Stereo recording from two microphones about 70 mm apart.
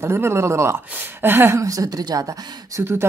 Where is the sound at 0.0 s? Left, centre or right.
Right.